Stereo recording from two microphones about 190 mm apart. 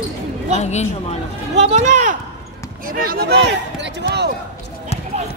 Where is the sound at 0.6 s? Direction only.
35° left (ahead or behind).